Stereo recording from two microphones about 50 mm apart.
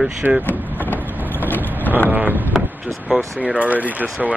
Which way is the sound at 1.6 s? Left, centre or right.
Left.